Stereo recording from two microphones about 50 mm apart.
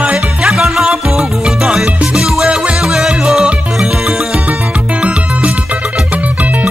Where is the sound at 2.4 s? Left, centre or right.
Right.